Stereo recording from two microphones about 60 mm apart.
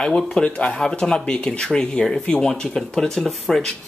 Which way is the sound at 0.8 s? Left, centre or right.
Centre.